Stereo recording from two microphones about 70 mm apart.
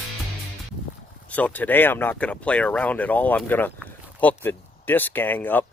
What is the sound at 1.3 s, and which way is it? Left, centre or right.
Speech, left.